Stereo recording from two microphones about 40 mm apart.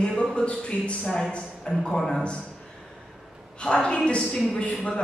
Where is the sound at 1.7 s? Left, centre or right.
Left.